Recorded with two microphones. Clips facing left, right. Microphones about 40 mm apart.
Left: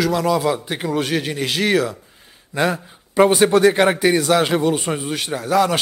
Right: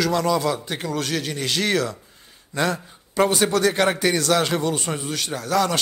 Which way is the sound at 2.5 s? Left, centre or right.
Centre.